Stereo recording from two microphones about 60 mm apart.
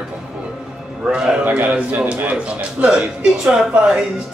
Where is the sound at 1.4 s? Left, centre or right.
Right.